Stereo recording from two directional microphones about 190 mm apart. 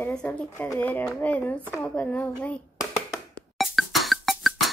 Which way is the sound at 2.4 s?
15° left (ahead or behind).